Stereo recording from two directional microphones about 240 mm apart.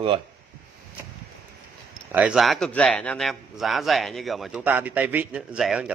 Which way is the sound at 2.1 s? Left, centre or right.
Centre.